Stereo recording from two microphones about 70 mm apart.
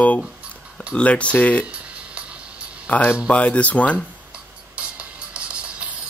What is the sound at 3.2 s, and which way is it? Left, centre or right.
Speech, centre.